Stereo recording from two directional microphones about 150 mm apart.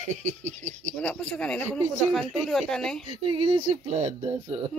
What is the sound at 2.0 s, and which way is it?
Speech, centre (ahead or behind).